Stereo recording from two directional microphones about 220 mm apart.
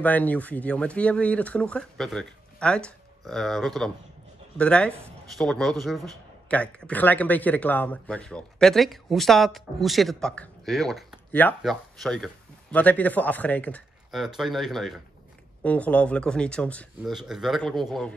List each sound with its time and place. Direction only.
0.0 s speech: 5° left (ahead or behind)